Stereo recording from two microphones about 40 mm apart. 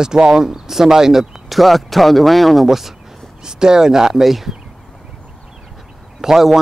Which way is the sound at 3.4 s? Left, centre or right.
Centre.